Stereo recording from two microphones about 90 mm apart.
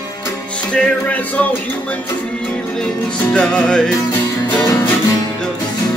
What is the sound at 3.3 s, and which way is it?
Music, 10° left (ahead or behind).